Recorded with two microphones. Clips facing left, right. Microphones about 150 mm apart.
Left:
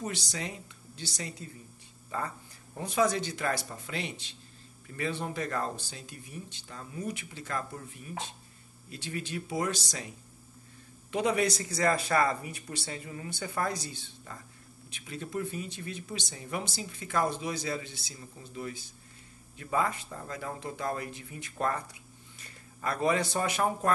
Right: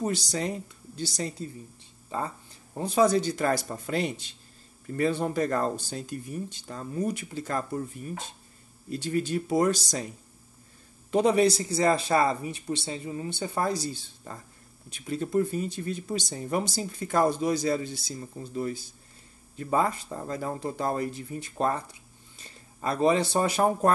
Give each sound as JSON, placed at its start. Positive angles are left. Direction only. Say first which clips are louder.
{"t": 0.0, "sound": "speech", "louder": "right 7 dB", "side_deg": -35}
{"t": 2.0, "sound": "speech", "louder": "right 3 dB", "side_deg": -25}
{"t": 11.1, "sound": "a man's voice", "louder": "right 6 dB", "side_deg": -35}